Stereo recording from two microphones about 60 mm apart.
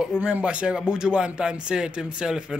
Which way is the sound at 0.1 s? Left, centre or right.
Centre.